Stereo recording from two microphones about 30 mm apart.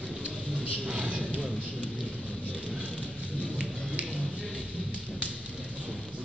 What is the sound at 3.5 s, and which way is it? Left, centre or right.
Music, right.